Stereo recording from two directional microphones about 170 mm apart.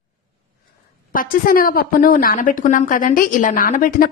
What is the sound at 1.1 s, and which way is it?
A woman's voice, 55° left (ahead or behind).